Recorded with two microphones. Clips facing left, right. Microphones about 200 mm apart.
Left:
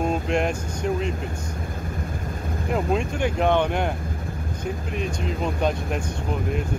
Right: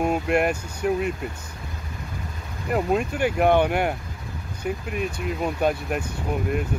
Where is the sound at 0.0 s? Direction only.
10° right (ahead or behind).